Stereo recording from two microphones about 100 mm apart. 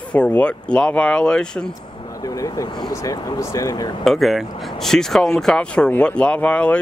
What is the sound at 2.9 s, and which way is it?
Speech, 35° left (ahead or behind).